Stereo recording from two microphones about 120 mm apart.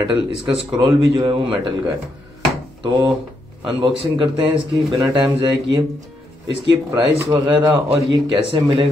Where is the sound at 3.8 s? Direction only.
45° right (ahead or behind).